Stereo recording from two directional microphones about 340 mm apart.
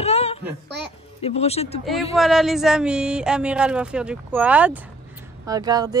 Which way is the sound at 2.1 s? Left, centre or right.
Centre.